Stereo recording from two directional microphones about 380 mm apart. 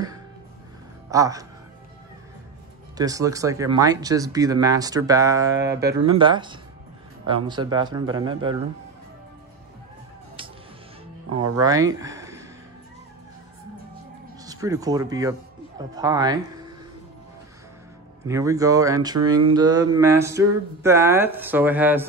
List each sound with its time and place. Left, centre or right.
1.1 s speech: centre
3.0 s speech: centre
11.5 s speech: centre
14.4 s speech: centre
18.2 s speech: centre